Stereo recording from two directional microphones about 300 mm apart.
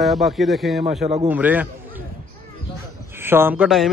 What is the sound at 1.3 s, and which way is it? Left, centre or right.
Speech, centre.